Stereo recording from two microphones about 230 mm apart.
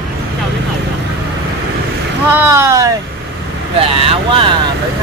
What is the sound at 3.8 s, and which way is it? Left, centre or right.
Speech, right.